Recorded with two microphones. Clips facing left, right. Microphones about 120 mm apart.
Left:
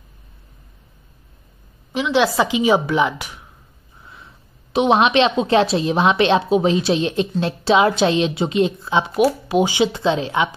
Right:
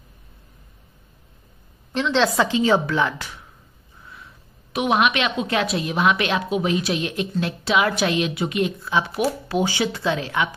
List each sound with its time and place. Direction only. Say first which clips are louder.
1.9 s a woman's voice: left 2 dB; 10° left (ahead or behind)
4.7 s a woman's voice: left 5 dB; 25° left (ahead or behind)